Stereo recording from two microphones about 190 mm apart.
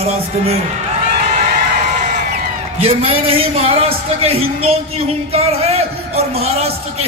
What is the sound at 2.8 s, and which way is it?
A man's voice, 30° right (ahead or behind).